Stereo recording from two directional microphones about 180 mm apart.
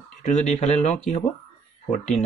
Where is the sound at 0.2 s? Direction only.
45° left (ahead or behind).